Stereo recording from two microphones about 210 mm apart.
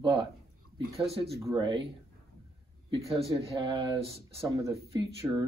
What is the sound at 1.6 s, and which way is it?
Speech, 20° right (ahead or behind).